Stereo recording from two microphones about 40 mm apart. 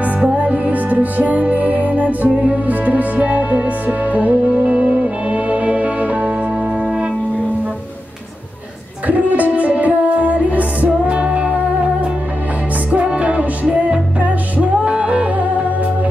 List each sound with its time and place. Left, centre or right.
0.4 s music: right
4.5 s music: right
9.0 s music: right